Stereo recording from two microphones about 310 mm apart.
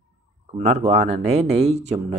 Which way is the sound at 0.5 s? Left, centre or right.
Right.